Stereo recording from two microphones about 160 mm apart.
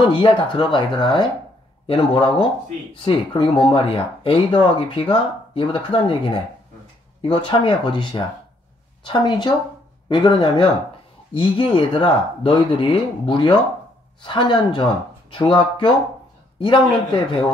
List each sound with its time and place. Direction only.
0.0 s a man's voice: 30° left (ahead or behind)